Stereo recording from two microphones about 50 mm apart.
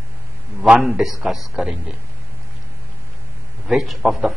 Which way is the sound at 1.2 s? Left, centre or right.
Centre.